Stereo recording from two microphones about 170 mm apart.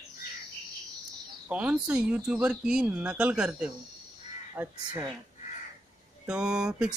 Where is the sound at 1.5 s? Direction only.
5° right (ahead or behind).